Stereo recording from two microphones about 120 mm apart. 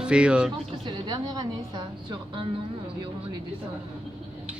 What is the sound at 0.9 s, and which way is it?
Speech, 30° right (ahead or behind).